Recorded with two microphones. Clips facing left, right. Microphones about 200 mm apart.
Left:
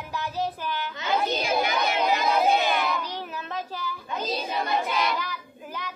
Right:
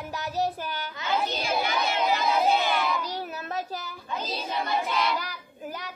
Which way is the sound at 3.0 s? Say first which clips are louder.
Right 1 dB; 40° right (ahead or behind).